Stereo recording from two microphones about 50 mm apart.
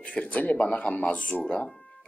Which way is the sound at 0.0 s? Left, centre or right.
Left.